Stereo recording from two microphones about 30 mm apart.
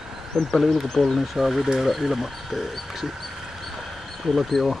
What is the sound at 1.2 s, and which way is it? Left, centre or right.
Speech, centre.